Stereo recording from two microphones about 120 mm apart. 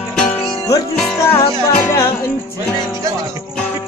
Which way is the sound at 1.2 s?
20° left (ahead or behind).